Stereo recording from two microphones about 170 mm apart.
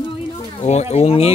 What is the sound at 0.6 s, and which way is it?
Speech, 40° left (ahead or behind).